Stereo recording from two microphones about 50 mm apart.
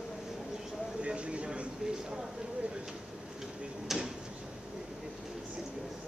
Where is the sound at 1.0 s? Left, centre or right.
Right.